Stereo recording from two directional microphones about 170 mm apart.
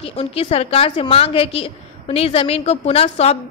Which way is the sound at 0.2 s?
35° left (ahead or behind).